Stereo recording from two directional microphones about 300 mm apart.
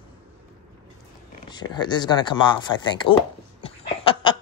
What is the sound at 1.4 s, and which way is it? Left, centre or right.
Speech, centre.